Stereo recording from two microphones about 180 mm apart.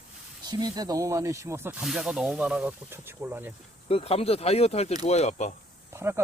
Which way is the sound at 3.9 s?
35° left (ahead or behind).